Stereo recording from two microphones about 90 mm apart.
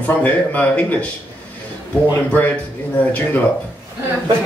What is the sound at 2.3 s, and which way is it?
Speech, 20° left (ahead or behind).